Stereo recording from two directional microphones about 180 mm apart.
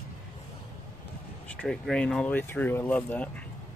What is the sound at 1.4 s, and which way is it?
Speech, 5° left (ahead or behind).